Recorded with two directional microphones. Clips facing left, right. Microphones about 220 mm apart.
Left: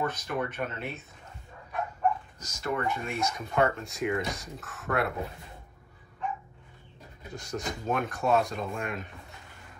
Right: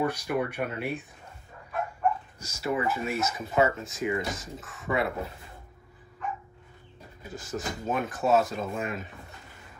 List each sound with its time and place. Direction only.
0.0 s speech: 10° right (ahead or behind)
2.4 s speech: 5° right (ahead or behind)
7.2 s speech: 5° right (ahead or behind)